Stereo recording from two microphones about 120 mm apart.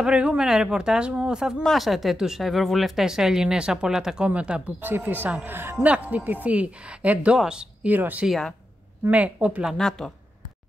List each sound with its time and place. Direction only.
0.0 s a woman's voice: 10° right (ahead or behind)
8.3 s speech: 5° left (ahead or behind)
9.0 s speech: 10° right (ahead or behind); by 10.1 s 5° left (ahead or behind)